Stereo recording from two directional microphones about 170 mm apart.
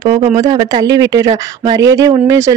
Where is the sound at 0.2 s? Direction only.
40° right (ahead or behind).